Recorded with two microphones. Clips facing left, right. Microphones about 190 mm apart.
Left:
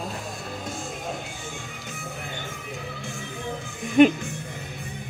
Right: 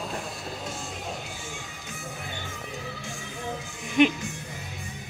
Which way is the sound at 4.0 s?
45° left (ahead or behind).